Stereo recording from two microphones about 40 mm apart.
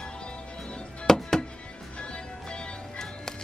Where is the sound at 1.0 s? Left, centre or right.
Centre.